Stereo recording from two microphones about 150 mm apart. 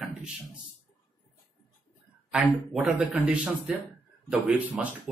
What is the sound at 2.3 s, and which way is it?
A man's voice, 5° right (ahead or behind).